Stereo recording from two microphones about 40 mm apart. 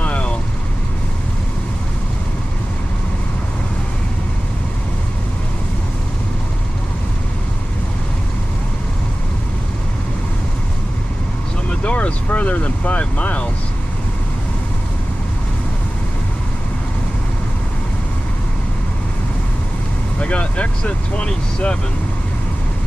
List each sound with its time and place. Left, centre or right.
0.0 s vehicle: left
11.7 s vehicle: left
20.2 s speech: left